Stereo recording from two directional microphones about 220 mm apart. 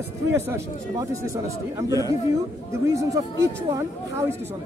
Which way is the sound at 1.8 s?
15° left (ahead or behind).